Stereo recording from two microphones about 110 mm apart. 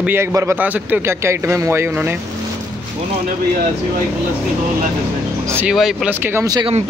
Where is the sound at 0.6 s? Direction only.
15° right (ahead or behind).